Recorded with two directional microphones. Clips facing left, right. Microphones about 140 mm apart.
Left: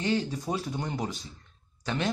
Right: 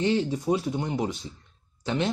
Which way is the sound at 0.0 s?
25° right (ahead or behind).